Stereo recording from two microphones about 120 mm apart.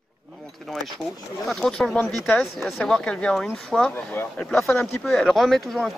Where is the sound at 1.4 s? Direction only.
Centre (ahead or behind).